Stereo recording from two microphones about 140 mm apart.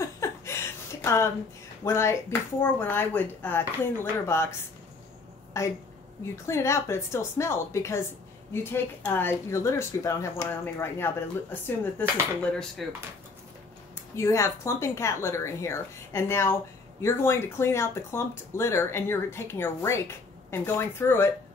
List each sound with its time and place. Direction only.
0.0 s chuckle: 20° left (ahead or behind)
1.0 s speech: 20° left (ahead or behind)
5.5 s speech: 20° left (ahead or behind); by 12.8 s 5° left (ahead or behind)
14.1 s speech: 20° left (ahead or behind)